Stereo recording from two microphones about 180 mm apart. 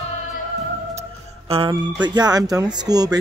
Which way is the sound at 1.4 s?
30° right (ahead or behind).